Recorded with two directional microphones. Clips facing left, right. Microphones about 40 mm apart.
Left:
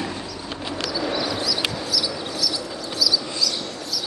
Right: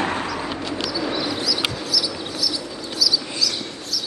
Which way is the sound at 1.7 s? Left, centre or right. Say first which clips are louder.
Even; centre.